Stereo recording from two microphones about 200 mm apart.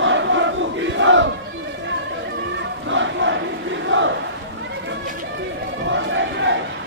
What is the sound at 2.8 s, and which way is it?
Crowd, 70° right (ahead or behind).